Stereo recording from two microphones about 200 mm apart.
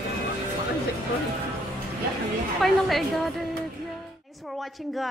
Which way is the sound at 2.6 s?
Centre (ahead or behind).